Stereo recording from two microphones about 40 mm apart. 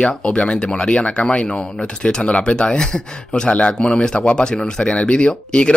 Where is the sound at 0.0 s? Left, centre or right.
Left.